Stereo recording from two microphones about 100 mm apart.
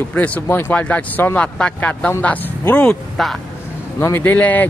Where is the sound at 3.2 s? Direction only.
5° left (ahead or behind).